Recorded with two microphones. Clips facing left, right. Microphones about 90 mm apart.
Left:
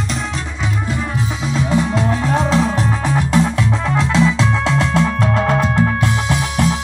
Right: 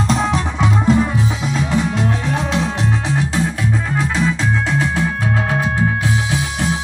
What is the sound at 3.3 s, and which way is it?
Music, 85° left.